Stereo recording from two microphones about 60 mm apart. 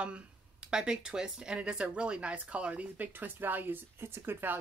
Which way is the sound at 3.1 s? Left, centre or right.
Right.